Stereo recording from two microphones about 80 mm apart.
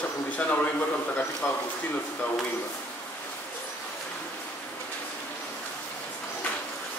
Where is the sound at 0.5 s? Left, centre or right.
Centre.